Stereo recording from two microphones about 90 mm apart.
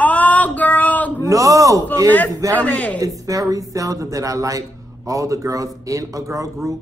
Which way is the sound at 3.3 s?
40° right (ahead or behind).